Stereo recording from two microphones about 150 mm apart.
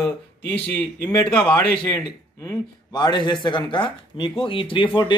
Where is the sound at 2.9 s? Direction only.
30° left (ahead or behind).